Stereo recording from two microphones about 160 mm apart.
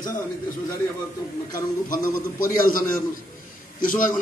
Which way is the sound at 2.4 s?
60° left (ahead or behind).